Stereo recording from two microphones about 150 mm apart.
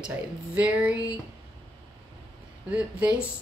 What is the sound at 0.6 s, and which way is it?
Speech, 10° right (ahead or behind).